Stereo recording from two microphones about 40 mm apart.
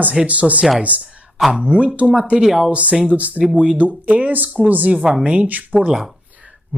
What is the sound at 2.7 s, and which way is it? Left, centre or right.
Speech, right.